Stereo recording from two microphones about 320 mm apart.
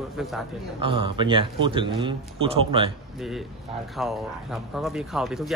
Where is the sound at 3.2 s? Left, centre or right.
Centre.